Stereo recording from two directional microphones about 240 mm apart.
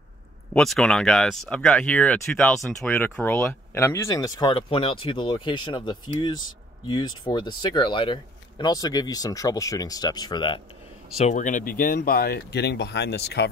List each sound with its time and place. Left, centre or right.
0.6 s speech: centre
11.1 s speech: left